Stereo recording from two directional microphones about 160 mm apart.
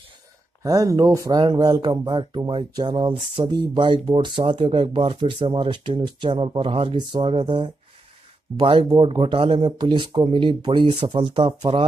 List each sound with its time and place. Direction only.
0.6 s speech: 20° right (ahead or behind)